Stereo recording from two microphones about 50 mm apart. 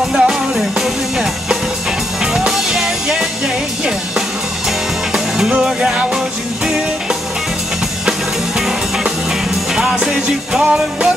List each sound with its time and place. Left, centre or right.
0.1 s music: centre
5.5 s music: centre
8.5 s music: centre
10.6 s music: right